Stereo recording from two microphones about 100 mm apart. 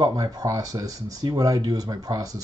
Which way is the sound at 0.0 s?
35° right (ahead or behind).